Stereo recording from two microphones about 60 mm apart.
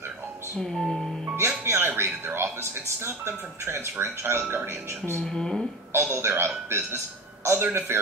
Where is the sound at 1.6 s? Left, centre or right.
Right.